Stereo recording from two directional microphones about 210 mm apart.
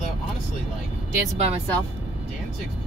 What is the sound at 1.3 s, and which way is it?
Speech, 30° right (ahead or behind).